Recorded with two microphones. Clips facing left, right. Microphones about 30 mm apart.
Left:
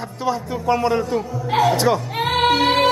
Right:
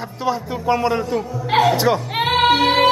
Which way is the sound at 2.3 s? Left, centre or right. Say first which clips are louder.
Right 1 dB; centre.